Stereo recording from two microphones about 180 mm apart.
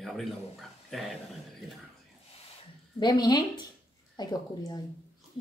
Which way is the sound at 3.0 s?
25° left (ahead or behind).